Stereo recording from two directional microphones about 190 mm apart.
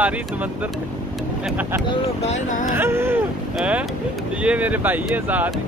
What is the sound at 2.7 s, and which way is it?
Speech, 10° right (ahead or behind).